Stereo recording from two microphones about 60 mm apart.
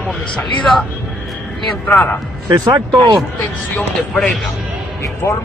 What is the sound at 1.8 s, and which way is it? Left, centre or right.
Speech, left.